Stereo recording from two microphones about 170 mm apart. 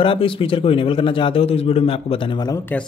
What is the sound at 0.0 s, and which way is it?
Speech, 30° left (ahead or behind).